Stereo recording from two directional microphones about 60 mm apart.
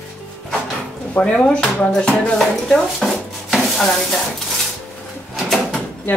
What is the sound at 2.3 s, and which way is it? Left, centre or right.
Dishes, centre.